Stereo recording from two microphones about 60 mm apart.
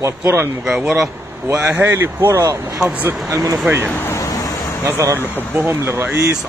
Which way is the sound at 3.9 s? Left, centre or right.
Left.